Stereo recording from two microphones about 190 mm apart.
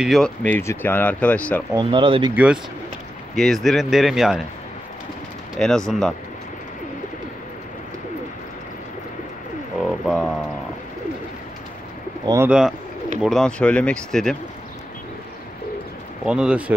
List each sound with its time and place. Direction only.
0.0 s speech: centre (ahead or behind)
1.7 s speech: 25° right (ahead or behind)
2.3 s speech: 5° right (ahead or behind)
5.6 s speech: centre (ahead or behind)
10.0 s speech: centre (ahead or behind)
12.4 s speech: 5° right (ahead or behind)
16.3 s speech: 5° right (ahead or behind)